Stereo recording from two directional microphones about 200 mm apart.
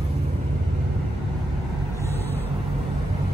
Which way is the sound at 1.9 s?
10° left (ahead or behind).